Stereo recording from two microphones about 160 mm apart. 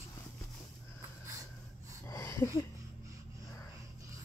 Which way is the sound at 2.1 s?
20° left (ahead or behind).